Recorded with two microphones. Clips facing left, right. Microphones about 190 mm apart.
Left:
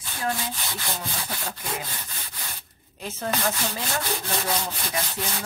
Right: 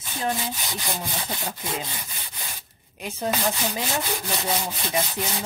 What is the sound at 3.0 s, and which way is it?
Rub, 15° right (ahead or behind).